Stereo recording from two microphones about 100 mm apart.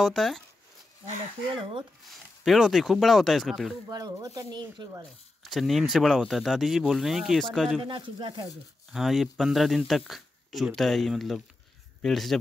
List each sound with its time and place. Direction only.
0.0 s speech: centre (ahead or behind)
1.5 s speech: 55° right (ahead or behind)
2.4 s speech: centre (ahead or behind)
3.9 s speech: 40° right (ahead or behind)
5.4 s speech: centre (ahead or behind)
7.8 s speech: 55° right (ahead or behind)
8.5 s speech: centre (ahead or behind)